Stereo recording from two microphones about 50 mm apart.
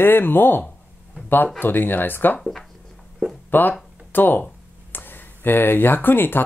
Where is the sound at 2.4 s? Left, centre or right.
Centre.